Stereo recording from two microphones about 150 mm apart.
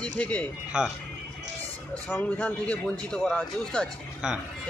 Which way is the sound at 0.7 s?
5° right (ahead or behind).